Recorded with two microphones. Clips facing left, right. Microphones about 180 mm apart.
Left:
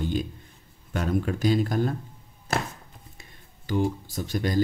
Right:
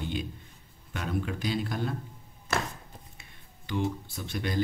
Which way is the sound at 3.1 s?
40° left (ahead or behind).